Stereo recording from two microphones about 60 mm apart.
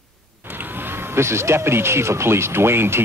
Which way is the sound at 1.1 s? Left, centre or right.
Right.